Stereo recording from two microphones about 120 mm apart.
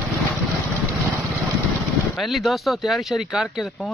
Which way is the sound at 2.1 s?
Centre (ahead or behind).